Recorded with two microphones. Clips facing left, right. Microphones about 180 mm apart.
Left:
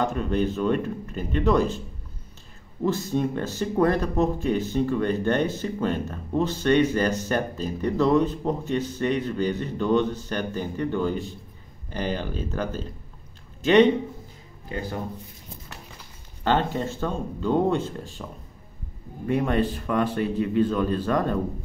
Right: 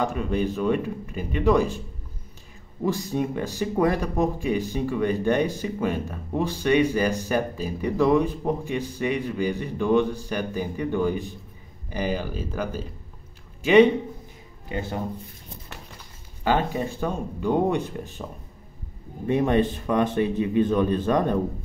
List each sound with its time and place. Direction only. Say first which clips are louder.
0.0 s speech: left 1 dB; 10° right (ahead or behind)
2.8 s a man's voice: left 1 dB; 15° right (ahead or behind)
14.7 s a man's voice: right 1 dB; 20° right (ahead or behind)
16.4 s a man's voice: even; 10° right (ahead or behind)